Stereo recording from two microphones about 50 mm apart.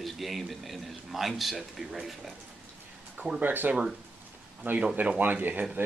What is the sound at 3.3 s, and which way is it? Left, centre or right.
Speech, right.